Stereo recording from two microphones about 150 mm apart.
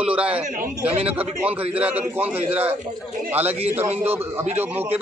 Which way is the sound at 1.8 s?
10° right (ahead or behind).